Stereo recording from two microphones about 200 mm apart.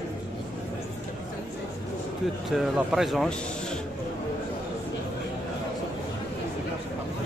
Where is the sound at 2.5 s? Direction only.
Centre (ahead or behind).